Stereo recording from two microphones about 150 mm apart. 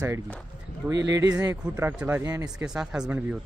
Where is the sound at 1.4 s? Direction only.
15° right (ahead or behind).